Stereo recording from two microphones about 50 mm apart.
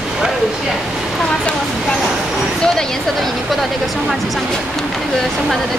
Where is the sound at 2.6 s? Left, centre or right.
Centre.